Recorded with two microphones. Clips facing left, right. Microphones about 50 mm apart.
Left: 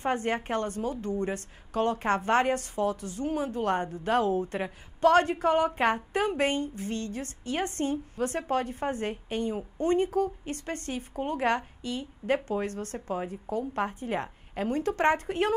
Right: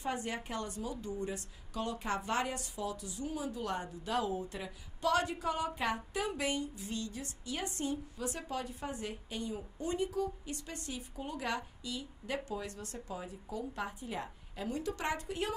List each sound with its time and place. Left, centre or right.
0.0 s a woman's voice: left